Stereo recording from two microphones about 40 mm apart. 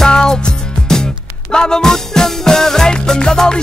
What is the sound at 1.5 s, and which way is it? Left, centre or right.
Music, centre.